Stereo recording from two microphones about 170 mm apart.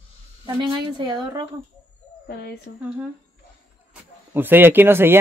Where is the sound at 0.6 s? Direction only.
30° right (ahead or behind).